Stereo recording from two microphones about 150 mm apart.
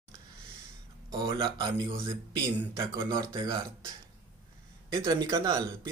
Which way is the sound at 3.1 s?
25° right (ahead or behind).